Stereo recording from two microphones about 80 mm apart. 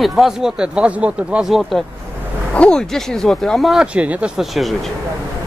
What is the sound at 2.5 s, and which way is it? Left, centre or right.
Speech, centre.